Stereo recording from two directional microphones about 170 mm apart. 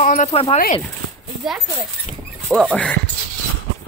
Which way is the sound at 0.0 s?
45° left (ahead or behind).